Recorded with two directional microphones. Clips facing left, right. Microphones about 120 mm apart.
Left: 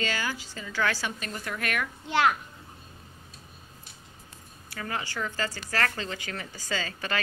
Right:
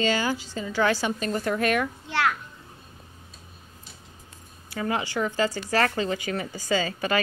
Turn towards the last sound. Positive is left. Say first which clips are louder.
# right 7 dB
turn(degrees=-10)  # may be behind; listen again after turning